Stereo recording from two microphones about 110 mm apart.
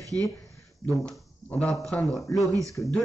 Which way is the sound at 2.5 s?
30° right (ahead or behind).